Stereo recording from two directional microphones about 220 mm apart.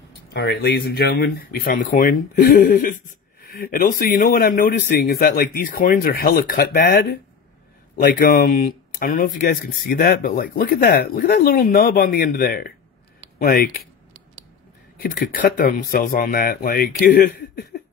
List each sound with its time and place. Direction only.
0.3 s speech: 50° left (ahead or behind)
8.3 s speech: 40° left (ahead or behind)
15.0 s speech: 40° left (ahead or behind)